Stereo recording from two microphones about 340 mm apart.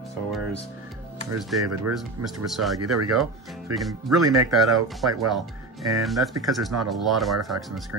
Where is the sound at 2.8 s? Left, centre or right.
Right.